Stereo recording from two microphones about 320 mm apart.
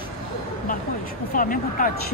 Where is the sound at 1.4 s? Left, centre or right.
Left.